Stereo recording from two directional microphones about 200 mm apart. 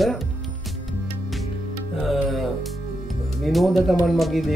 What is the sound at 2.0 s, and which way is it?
Music, centre (ahead or behind).